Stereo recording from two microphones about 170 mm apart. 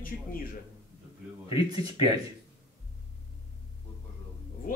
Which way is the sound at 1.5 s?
20° right (ahead or behind).